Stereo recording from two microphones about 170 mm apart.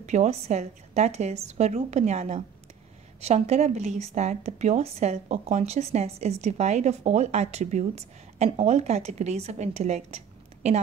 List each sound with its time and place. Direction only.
0.0 s a woman's voice: 40° right (ahead or behind)